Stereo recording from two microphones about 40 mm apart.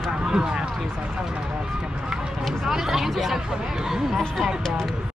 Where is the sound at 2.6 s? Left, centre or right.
Centre.